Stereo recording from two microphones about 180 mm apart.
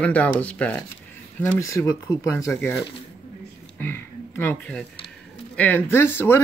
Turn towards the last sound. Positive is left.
turn(degrees=10)  # may be behind; listen again after turning